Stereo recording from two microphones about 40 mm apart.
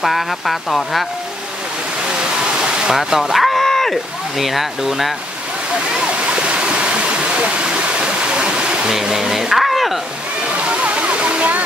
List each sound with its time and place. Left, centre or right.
0.0 s speech: centre
2.6 s speech: centre
3.3 s a sound: centre
4.4 s speech: centre
6.1 s waterfall: right
8.9 s speech: centre
10.5 s music: right